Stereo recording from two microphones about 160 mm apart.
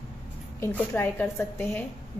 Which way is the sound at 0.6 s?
15° left (ahead or behind).